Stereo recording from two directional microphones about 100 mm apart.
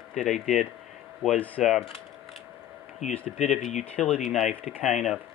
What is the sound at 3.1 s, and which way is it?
Speech, 10° left (ahead or behind).